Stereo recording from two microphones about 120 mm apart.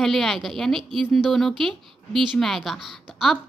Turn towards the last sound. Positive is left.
turn(degrees=0)  # may be behind; listen again after turning